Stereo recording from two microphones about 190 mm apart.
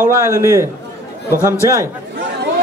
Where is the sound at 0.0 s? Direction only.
15° right (ahead or behind).